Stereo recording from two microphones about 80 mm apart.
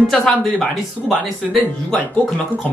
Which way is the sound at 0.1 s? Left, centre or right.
Centre.